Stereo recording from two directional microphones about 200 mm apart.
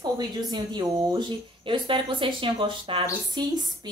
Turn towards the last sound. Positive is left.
turn(degrees=-20)  # may be behind; listen again after turning